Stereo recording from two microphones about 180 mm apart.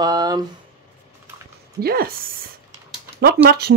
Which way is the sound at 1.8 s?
55° right (ahead or behind).